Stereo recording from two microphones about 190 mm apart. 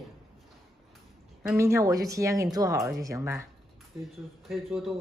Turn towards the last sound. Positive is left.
turn(degrees=0)  # may be behind; listen again after turning